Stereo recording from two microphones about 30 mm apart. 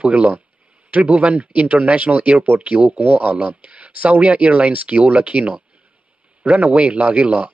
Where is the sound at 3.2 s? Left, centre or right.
Right.